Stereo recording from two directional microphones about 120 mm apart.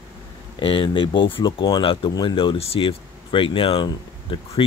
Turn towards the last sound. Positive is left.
turn(degrees=45)  # may be behind; listen again after turning